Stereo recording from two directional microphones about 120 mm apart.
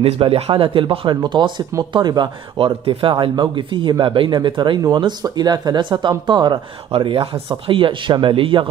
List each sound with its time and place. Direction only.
0.0 s speech: 50° right (ahead or behind)